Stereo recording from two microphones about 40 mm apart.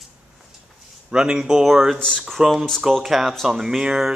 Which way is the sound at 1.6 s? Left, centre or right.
Centre.